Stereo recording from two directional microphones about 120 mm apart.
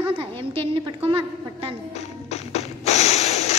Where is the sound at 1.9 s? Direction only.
65° left (ahead or behind).